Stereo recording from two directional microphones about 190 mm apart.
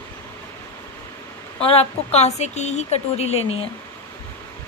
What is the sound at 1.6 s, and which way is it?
Speech, 30° left (ahead or behind).